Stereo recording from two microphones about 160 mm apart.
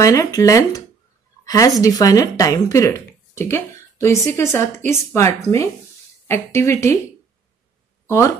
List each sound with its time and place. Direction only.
0.0 s speech: 20° left (ahead or behind)
1.4 s a sound: 20° left (ahead or behind)
1.8 s speech: 20° left (ahead or behind)